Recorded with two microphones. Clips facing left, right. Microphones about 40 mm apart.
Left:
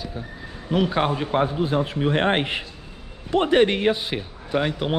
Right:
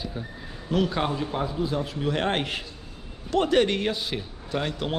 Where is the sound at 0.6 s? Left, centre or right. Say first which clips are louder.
Left 4 dB; centre.